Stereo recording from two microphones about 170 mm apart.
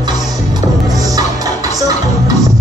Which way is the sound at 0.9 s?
20° right (ahead or behind).